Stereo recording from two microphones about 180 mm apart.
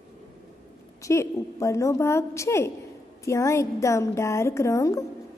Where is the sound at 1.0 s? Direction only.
15° left (ahead or behind).